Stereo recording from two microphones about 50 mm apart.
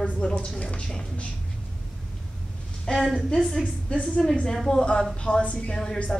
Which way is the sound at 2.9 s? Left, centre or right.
Centre.